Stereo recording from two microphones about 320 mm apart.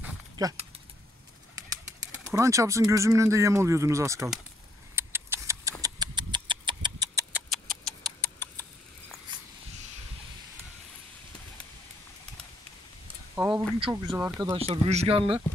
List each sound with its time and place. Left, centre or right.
0.0 s horse: centre
2.3 s speech: centre
4.9 s a sound: centre
7.4 s a sound: centre
13.6 s speech: centre
14.5 s speech: centre